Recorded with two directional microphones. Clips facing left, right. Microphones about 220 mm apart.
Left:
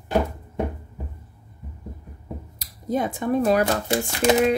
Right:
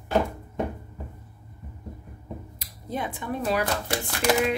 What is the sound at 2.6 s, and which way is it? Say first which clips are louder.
Speech: left 8 dB; 40° left (ahead or behind).